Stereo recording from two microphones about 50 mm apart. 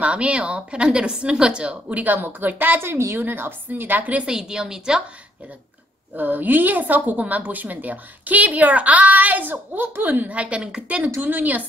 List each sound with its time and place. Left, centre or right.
0.0 s a woman's voice: right
4.3 s a woman's voice: centre
6.1 s a woman's voice: right
11.1 s a woman's voice: right